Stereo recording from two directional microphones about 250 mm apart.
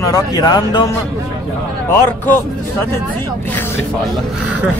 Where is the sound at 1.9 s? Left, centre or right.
Centre.